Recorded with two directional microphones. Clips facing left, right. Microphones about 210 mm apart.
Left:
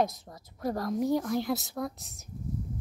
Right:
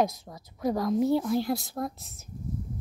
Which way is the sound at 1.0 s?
20° left (ahead or behind).